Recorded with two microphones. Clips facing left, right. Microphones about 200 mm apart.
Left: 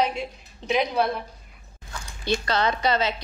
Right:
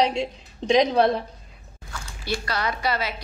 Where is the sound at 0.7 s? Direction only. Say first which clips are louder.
Right 5 dB; 30° right (ahead or behind).